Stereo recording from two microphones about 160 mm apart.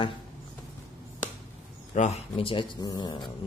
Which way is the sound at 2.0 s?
45° left (ahead or behind).